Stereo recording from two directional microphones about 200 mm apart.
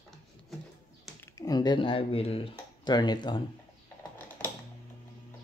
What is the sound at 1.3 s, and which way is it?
Speech, 20° left (ahead or behind).